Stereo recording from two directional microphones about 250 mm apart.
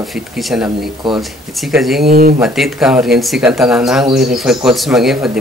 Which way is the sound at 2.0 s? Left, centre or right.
Right.